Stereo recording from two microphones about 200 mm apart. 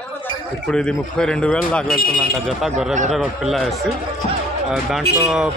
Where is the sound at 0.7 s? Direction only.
5° left (ahead or behind).